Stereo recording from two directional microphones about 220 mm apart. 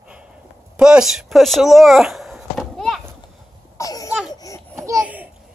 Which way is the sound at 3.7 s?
15° left (ahead or behind).